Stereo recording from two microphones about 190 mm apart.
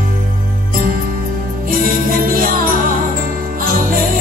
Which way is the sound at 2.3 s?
45° right (ahead or behind).